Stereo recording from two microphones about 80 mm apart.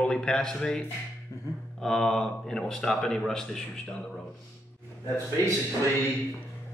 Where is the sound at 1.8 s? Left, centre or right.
Centre.